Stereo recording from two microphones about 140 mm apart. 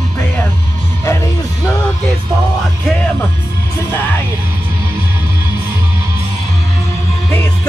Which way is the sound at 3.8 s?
15° left (ahead or behind).